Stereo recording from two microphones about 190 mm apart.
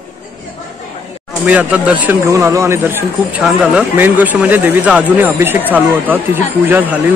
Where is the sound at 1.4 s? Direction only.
10° right (ahead or behind).